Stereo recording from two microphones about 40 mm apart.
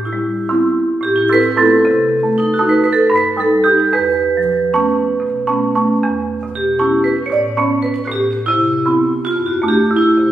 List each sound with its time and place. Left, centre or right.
1.3 s music: centre
2.0 s music: centre
5.5 s marimba: centre